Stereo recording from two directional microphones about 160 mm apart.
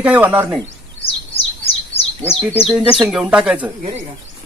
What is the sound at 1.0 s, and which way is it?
Bird, 40° left (ahead or behind).